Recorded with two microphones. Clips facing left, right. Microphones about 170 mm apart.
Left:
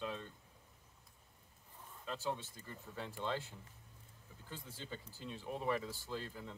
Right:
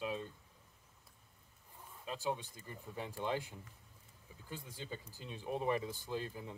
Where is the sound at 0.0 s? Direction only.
15° right (ahead or behind).